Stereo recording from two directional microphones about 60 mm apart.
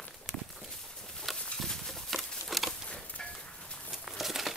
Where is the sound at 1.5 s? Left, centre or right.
Centre.